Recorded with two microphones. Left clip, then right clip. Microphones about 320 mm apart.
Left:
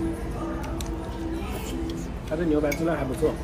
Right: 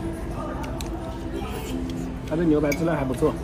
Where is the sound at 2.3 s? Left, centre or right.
Right.